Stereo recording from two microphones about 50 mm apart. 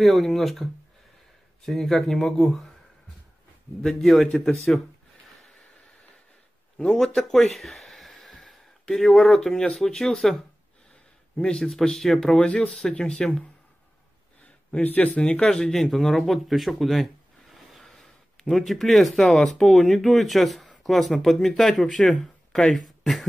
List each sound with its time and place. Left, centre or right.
0.0 s speech: centre
3.8 s speech: centre
6.8 s a sound: centre
9.5 s speech: centre
9.8 s speech: centre
11.3 s speech: centre
12.4 s speech: left
14.7 s speech: left
15.5 s speech: centre